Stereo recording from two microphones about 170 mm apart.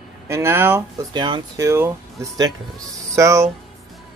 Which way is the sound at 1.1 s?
25° right (ahead or behind).